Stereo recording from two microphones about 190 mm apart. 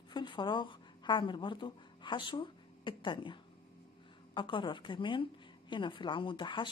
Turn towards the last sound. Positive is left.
turn(degrees=25)  # may be behind; listen again after turning